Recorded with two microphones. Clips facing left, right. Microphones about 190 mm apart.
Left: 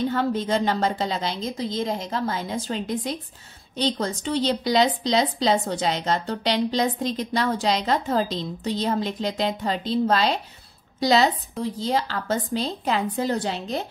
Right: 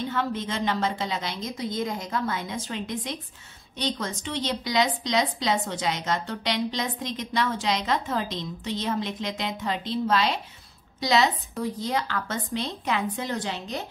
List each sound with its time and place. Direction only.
0.1 s a woman's voice: 35° left (ahead or behind)